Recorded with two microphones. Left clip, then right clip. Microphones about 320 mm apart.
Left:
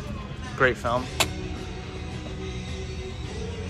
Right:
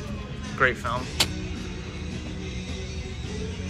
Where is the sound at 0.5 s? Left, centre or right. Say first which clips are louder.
Left 1 dB; centre.